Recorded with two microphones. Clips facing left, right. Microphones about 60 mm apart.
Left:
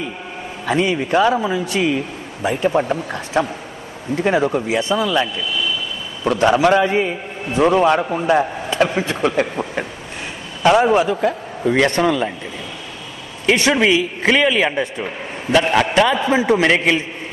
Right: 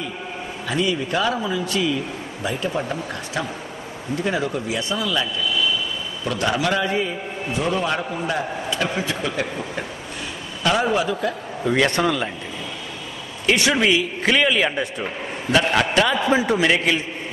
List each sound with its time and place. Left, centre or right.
0.7 s a man's voice: left
10.6 s a man's voice: left
13.6 s a man's voice: left
16.1 s a man's voice: left
16.5 s a man's voice: left